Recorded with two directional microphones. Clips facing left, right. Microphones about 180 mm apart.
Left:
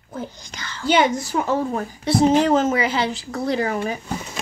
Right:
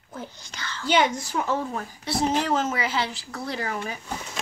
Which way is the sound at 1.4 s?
45° left (ahead or behind).